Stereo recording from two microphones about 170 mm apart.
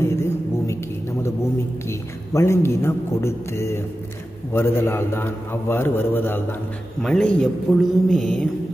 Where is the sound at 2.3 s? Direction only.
15° left (ahead or behind).